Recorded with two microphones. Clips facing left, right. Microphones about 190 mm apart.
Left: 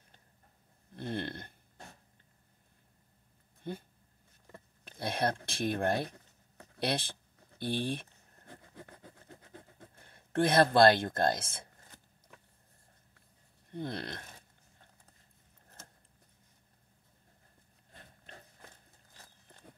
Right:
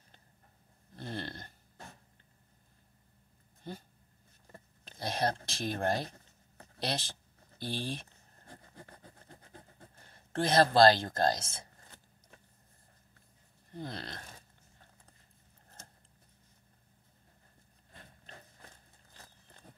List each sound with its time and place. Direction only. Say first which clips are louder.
0.9 s a sound: left 4 dB; 55° left (ahead or behind)
4.8 s speech: even; 55° left (ahead or behind)
10.0 s speech: left 3 dB; 55° left (ahead or behind)
13.7 s speech: left 4 dB; 55° left (ahead or behind)